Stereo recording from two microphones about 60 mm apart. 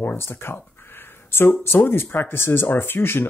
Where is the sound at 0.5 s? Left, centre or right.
Left.